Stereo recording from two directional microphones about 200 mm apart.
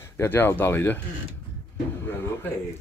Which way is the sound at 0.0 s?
10° left (ahead or behind).